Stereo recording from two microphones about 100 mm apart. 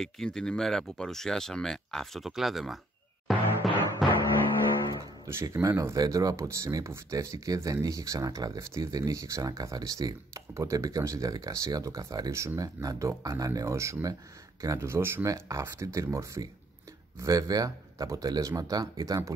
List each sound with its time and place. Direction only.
0.0 s speech: 5° left (ahead or behind)
3.3 s music: centre (ahead or behind)
5.2 s speech: 30° right (ahead or behind)